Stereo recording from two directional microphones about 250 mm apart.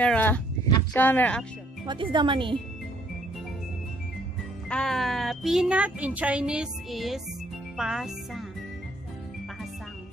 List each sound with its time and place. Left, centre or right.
0.0 s speech: centre
1.9 s speech: centre
4.6 s speech: centre
7.7 s music: centre